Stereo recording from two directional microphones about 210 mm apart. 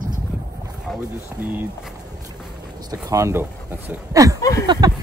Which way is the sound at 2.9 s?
15° right (ahead or behind).